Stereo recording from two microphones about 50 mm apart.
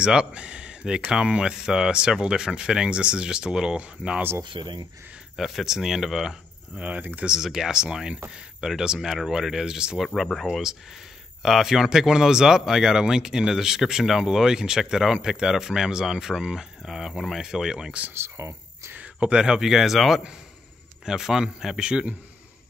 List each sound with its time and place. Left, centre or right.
0.0 s speech: centre
5.3 s speech: centre
6.8 s speech: right
7.2 s speech: centre
10.0 s speech: centre
11.4 s speech: centre
18.1 s speech: right
19.1 s speech: centre